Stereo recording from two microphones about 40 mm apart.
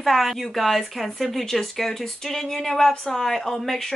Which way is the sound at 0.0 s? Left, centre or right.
Centre.